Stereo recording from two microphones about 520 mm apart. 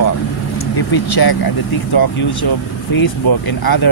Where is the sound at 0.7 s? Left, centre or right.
Left.